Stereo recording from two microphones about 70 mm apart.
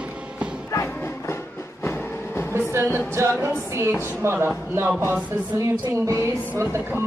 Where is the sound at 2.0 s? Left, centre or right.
Left.